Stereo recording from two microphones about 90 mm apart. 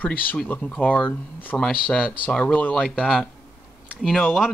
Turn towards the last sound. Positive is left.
turn(degrees=0)  # may be behind; listen again after turning